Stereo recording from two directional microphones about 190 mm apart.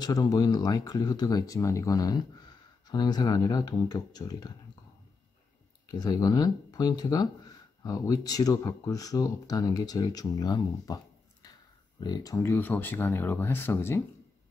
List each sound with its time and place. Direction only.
0.0 s speech: 20° left (ahead or behind)
5.9 s speech: 20° left (ahead or behind)
11.4 s a sound: 20° left (ahead or behind)
12.0 s speech: 20° left (ahead or behind)